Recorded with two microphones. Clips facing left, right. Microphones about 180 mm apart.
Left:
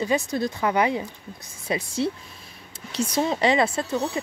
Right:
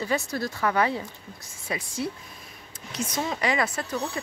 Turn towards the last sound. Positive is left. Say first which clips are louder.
# left 5 dB
turn(degrees=25)  # may be behind; listen again after turning